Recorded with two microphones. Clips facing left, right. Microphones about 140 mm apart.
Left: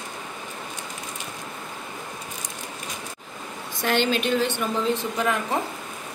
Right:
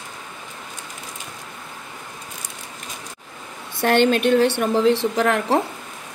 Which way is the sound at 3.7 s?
65° right (ahead or behind).